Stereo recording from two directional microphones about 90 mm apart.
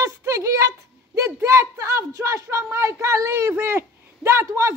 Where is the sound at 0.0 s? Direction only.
35° right (ahead or behind).